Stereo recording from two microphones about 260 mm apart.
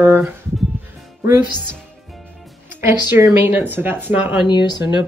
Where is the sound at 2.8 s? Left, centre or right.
Centre.